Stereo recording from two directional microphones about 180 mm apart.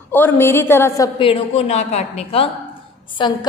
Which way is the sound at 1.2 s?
30° left (ahead or behind).